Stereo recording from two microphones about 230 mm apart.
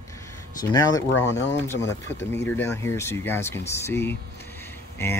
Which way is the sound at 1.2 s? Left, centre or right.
Left.